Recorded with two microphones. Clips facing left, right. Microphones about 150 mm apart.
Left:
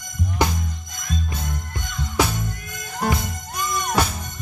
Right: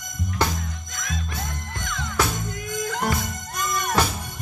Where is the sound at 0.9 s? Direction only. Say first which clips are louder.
Left 2 dB; 90° right.